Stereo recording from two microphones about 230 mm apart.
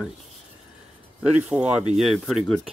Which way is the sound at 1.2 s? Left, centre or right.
Centre.